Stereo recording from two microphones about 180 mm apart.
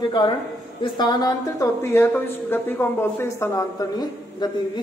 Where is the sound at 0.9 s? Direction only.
25° left (ahead or behind).